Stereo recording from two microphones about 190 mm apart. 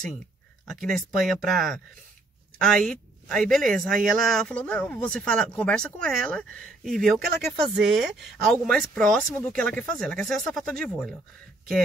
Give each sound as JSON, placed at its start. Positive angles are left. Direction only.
{"t": 0.7, "sound": "speech", "side_deg": 0}
{"t": 2.8, "sound": "speech", "side_deg": 5}